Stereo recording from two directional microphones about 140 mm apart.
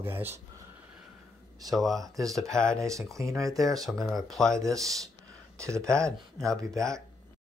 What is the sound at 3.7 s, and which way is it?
Speech, centre (ahead or behind).